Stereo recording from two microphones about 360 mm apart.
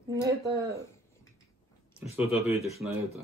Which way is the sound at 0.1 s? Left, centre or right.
Centre.